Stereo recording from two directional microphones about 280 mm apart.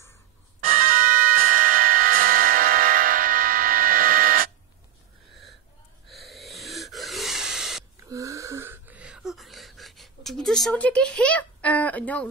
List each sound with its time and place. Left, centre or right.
0.8 s music: right
1.6 s music: right
6.0 s wheeze: centre
8.1 s a sound: centre